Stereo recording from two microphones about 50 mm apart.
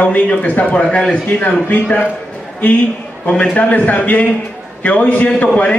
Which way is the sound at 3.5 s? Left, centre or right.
Left.